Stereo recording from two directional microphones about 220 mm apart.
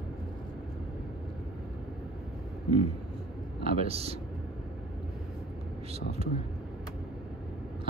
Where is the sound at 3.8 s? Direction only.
25° right (ahead or behind).